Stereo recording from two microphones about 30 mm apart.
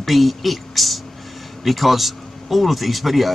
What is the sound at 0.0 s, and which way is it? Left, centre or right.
Speech, centre.